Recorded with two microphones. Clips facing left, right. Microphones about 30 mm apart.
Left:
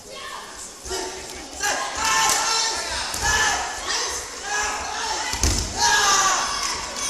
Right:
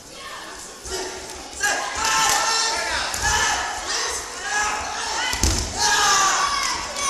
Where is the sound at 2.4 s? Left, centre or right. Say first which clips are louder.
Right 1 dB; centre.